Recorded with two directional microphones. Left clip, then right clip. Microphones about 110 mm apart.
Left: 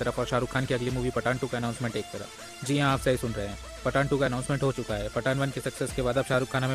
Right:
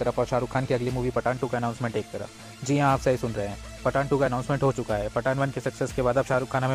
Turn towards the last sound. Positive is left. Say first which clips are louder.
# right 2 dB
turn(degrees=15)  # may be behind; listen again after turning